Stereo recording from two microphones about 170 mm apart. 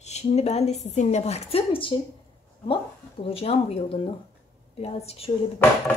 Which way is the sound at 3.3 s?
35° left (ahead or behind).